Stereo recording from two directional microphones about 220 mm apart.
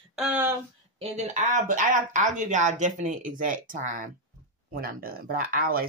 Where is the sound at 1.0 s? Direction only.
30° right (ahead or behind).